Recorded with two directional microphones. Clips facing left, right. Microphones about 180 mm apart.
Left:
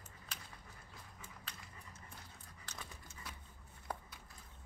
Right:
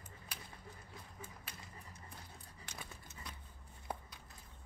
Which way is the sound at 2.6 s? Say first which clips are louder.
Even; 15° right (ahead or behind).